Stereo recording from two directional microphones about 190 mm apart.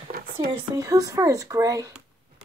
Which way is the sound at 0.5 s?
20° right (ahead or behind).